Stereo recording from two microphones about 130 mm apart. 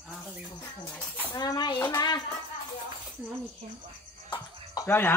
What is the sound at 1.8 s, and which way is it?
Speech, 20° left (ahead or behind).